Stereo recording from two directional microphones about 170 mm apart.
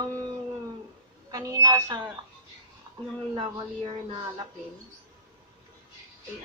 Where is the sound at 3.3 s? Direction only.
30° right (ahead or behind).